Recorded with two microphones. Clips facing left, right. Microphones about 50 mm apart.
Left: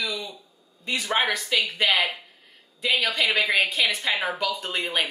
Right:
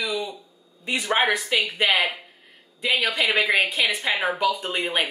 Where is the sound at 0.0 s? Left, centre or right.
Right.